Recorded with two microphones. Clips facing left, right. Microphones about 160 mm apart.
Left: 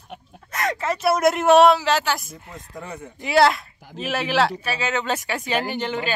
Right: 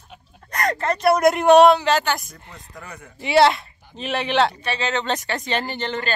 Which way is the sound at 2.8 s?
25° left (ahead or behind).